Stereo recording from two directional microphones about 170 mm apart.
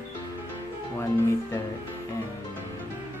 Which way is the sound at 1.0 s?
15° left (ahead or behind).